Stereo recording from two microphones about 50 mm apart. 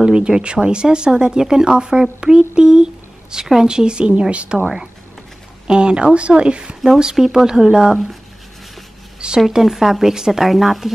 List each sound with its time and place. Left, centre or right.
0.0 s speech: centre
5.7 s speech: centre
9.5 s speech: centre